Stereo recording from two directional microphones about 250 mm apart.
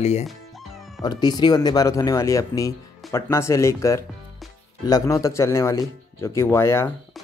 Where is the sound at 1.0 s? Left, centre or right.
Centre.